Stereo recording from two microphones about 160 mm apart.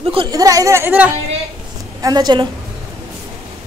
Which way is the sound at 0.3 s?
20° right (ahead or behind).